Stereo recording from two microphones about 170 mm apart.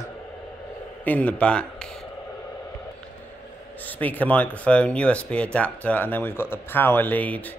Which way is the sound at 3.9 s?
10° left (ahead or behind).